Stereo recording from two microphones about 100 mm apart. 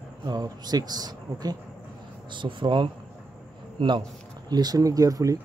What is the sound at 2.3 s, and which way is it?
Speech, 55° right (ahead or behind).